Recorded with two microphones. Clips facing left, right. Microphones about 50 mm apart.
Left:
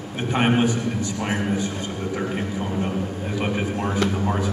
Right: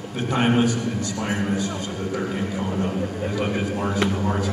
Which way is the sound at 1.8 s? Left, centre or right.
Centre.